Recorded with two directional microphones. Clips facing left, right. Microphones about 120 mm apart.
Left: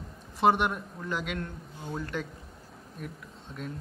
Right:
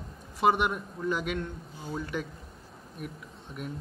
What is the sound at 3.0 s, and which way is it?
Speech, 15° right (ahead or behind).